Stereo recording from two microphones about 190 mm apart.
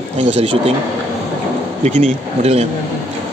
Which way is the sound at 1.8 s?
40° right (ahead or behind).